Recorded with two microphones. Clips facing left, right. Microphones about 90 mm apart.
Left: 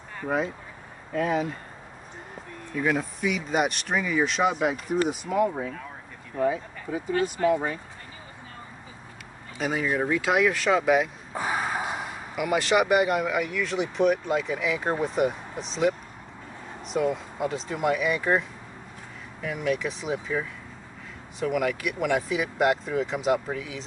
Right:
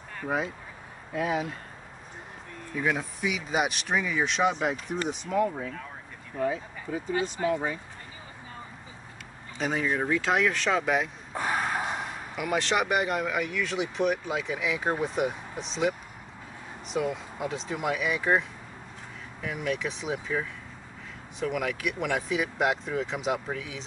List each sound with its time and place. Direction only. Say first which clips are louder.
1.1 s speech: left 3 dB; 5° right (ahead or behind)
2.7 s speech: left 3 dB; centre (ahead or behind)
7.4 s speech: left 5 dB; 10° right (ahead or behind)
9.6 s speech: left 2 dB; 5° left (ahead or behind)
19.4 s speech: left 3 dB; centre (ahead or behind)